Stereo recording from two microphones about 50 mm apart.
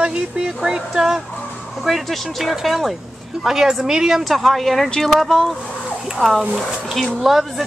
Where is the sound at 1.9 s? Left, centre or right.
Centre.